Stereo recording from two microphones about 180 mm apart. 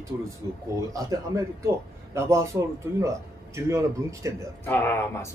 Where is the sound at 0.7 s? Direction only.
20° right (ahead or behind).